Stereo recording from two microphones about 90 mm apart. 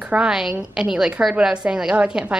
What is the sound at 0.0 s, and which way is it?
A woman's voice, 10° right (ahead or behind).